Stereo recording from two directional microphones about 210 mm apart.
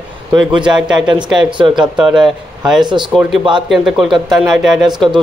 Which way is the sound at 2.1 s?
Centre (ahead or behind).